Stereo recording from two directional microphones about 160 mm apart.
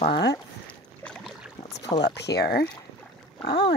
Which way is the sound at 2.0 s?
90° left.